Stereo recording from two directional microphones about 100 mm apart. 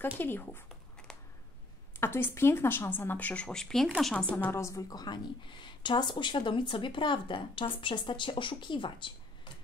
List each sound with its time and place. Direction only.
0.0 s speech: 20° left (ahead or behind)
1.1 s a sound: 5° left (ahead or behind)
2.0 s a woman's voice: 25° left (ahead or behind)
4.6 s a woman's voice: 30° left (ahead or behind); by 9.5 s 55° left (ahead or behind)